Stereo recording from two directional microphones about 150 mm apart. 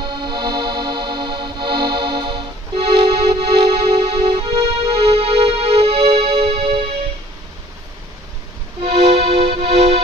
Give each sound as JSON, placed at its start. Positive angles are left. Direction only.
{"t": 0.0, "sound": "music", "side_deg": -30}
{"t": 8.8, "sound": "music", "side_deg": -40}